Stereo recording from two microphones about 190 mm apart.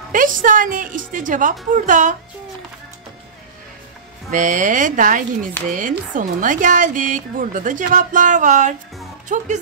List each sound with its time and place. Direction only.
0.1 s a child's voice: 45° right (ahead or behind)
4.3 s a child's voice: 40° right (ahead or behind)